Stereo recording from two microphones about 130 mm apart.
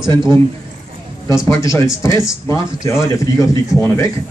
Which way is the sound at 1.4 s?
25° left (ahead or behind).